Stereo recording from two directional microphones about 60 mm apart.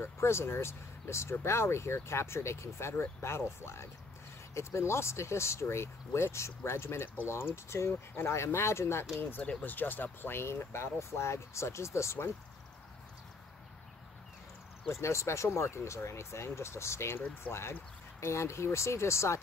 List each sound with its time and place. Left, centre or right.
0.0 s speech: left
9.6 s speech: left
14.9 s speech: left